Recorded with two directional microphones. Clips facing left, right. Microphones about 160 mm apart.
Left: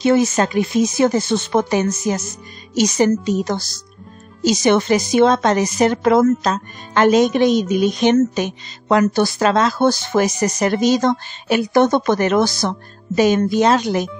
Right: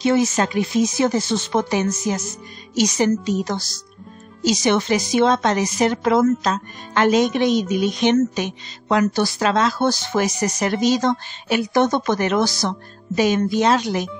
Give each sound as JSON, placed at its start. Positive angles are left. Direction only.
{"t": 0.0, "sound": "speech", "side_deg": 50}